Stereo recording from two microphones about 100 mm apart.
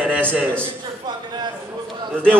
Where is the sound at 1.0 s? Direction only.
45° right (ahead or behind).